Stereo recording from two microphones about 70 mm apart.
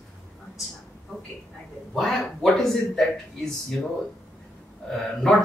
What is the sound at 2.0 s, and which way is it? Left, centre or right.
A man's voice, centre.